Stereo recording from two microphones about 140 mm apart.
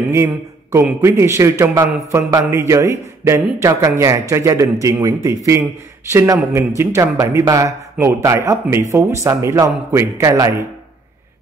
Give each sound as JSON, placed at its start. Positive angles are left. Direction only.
{"t": 0.1, "sound": "a man's voice", "side_deg": -20}